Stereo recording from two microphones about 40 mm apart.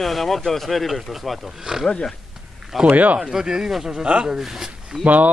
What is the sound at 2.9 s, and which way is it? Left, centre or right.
Speech, right.